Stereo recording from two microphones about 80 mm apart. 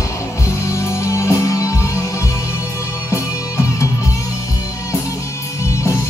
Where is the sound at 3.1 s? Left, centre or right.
Left.